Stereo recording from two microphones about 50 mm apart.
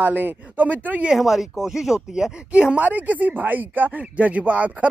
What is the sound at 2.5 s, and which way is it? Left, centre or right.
Speech, right.